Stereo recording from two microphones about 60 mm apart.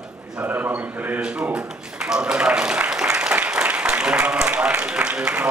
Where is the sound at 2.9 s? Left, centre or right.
Centre.